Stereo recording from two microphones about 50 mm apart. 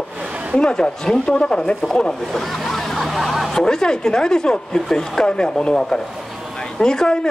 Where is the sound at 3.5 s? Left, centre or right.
Centre.